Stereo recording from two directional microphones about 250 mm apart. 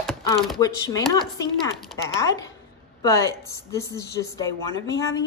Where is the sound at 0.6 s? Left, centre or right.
Centre.